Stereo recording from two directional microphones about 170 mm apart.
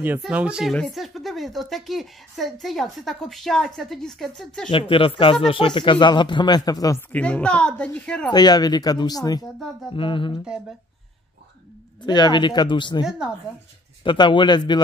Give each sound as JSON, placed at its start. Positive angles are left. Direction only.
{"t": 0.2, "sound": "speech", "side_deg": -5}
{"t": 4.6, "sound": "speech", "side_deg": 30}
{"t": 8.3, "sound": "speech", "side_deg": 25}
{"t": 12.0, "sound": "speech", "side_deg": 25}
{"t": 14.0, "sound": "speech", "side_deg": 25}